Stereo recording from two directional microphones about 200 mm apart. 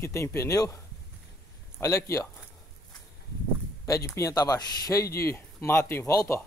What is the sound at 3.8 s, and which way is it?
Speech, 15° left (ahead or behind).